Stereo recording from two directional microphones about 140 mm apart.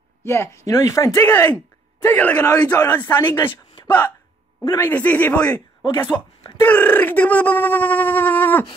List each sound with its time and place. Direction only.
0.2 s speech: 20° left (ahead or behind)
2.4 s speech: 25° left (ahead or behind)
2.9 s speech: 15° left (ahead or behind)
3.3 s speech: 35° left (ahead or behind)
3.8 s speech: 10° left (ahead or behind)